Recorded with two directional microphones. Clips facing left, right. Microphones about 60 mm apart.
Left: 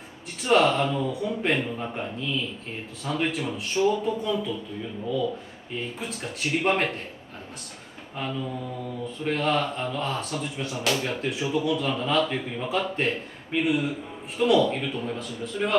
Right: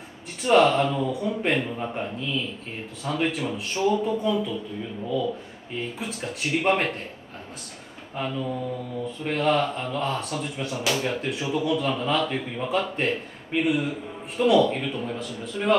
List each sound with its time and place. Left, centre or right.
0.4 s speech: centre
5.9 s speech: centre
8.2 s speech: centre